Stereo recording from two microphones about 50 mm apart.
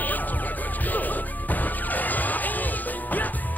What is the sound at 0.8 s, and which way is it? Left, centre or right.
Smash, left.